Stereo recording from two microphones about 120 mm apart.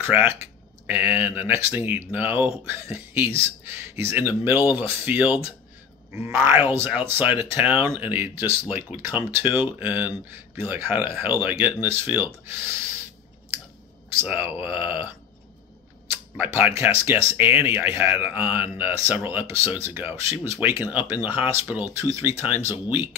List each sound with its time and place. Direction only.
0.0 s speech: 20° right (ahead or behind)
14.2 s speech: 15° right (ahead or behind)
16.1 s speech: 15° right (ahead or behind)
22.1 s speech: 25° right (ahead or behind)